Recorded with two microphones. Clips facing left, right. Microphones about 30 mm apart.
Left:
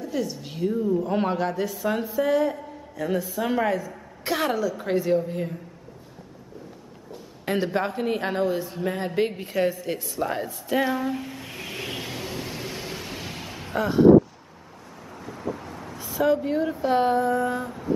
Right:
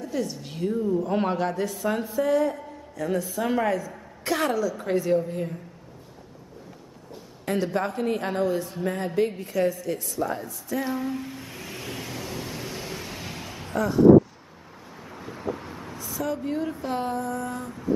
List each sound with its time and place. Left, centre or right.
0.0 s a woman's voice: centre
7.4 s a sound: left
7.9 s a woman's voice: centre
9.4 s speech: left
10.8 s a woman's voice: centre
11.5 s vehicle: left
13.7 s a sound: left
15.0 s vehicle: centre
16.0 s vehicle: left
16.3 s a woman's voice: centre
16.9 s a sound: left